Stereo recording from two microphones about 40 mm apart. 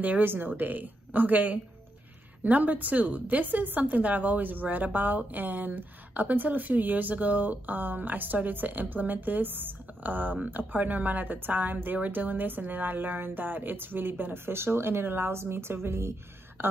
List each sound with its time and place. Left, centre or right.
0.0 s a woman's voice: right